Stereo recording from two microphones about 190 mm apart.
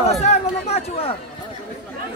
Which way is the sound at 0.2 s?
35° left (ahead or behind).